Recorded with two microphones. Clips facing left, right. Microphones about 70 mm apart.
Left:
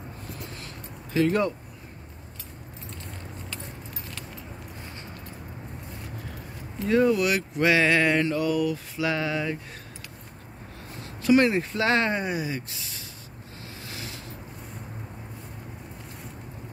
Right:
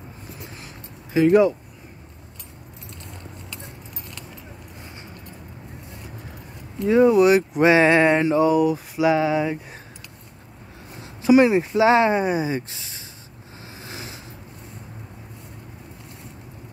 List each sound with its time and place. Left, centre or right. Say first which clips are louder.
1.1 s speech: right 8 dB; centre
6.9 s speech: right 7 dB; centre
11.0 s speech: right 5 dB; centre
13.7 s a sound: right 2 dB; right